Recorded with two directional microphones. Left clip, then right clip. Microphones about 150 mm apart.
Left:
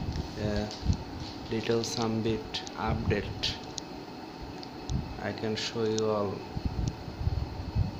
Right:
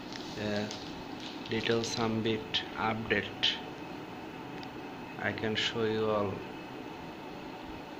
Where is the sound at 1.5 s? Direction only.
25° left (ahead or behind).